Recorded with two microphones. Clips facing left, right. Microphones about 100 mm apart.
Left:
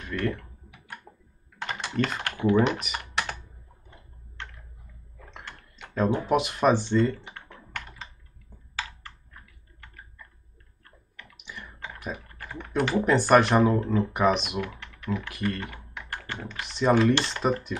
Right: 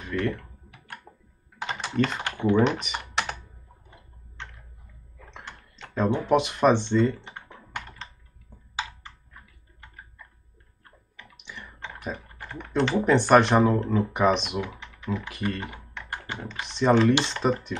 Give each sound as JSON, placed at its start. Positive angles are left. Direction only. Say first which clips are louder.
{"t": 1.1, "sound": "computer keyboard", "louder": "even", "side_deg": -15}
{"t": 1.6, "sound": "typing", "louder": "right 1 dB", "side_deg": 0}
{"t": 2.0, "sound": "speech", "louder": "right 2 dB", "side_deg": 0}
{"t": 5.8, "sound": "speech", "louder": "even", "side_deg": 5}
{"t": 7.3, "sound": "computer keyboard", "louder": "right 2 dB", "side_deg": -15}
{"t": 11.3, "sound": "clicking", "louder": "even", "side_deg": 0}
{"t": 12.6, "sound": "speech", "louder": "right 1 dB", "side_deg": 5}
{"t": 14.6, "sound": "typing", "louder": "even", "side_deg": -15}
{"t": 15.1, "sound": "speech", "louder": "even", "side_deg": 0}
{"t": 16.1, "sound": "computer keyboard", "louder": "right 1 dB", "side_deg": -15}
{"t": 16.4, "sound": "speech", "louder": "right 1 dB", "side_deg": 5}